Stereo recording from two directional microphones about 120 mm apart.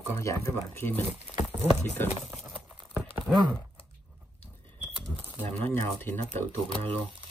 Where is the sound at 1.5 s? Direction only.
20° right (ahead or behind).